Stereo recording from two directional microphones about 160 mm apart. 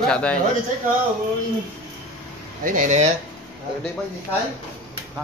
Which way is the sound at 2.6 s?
55° right (ahead or behind).